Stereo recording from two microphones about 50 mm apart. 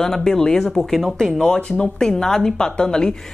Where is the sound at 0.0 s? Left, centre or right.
Centre.